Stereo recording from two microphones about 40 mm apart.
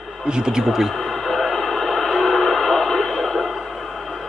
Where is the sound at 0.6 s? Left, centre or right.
Centre.